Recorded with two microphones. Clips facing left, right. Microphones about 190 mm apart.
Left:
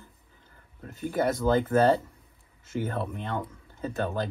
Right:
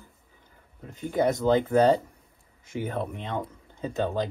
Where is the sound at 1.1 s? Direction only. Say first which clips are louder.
Right 2 dB; 20° right (ahead or behind).